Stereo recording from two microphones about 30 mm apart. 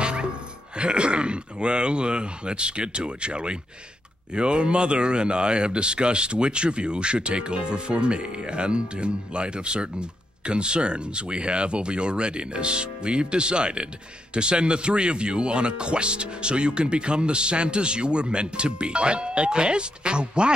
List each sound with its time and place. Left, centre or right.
0.0 s music: right
0.7 s speech: right